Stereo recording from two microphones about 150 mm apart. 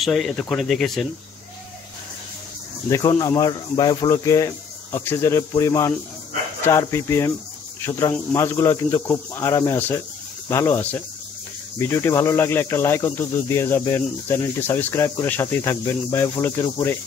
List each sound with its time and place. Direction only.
0.0 s speech: centre (ahead or behind)
2.9 s speech: 25° left (ahead or behind)
7.8 s cricket: 20° left (ahead or behind)